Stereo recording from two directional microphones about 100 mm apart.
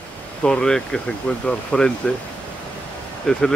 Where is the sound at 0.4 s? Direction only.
10° left (ahead or behind).